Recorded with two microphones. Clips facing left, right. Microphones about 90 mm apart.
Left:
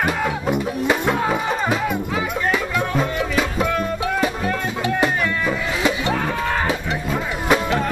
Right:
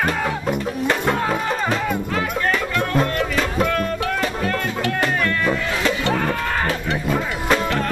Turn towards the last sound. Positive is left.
turn(degrees=10)  # may be behind; listen again after turning